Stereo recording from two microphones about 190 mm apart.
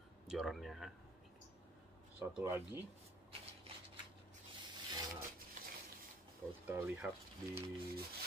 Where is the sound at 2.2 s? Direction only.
10° right (ahead or behind).